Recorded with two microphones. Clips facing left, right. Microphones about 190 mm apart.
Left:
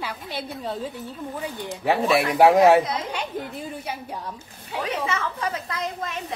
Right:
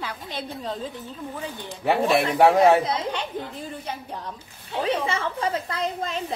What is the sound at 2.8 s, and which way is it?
Speech, 30° right (ahead or behind).